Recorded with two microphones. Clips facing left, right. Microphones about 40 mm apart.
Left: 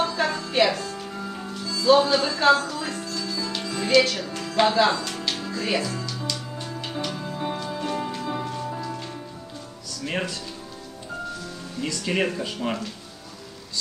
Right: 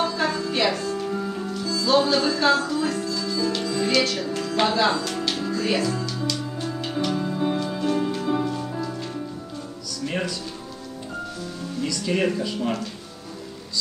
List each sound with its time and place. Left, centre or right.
0.0 s music: centre
3.8 s speech: centre
5.2 s music: centre
12.0 s speech: centre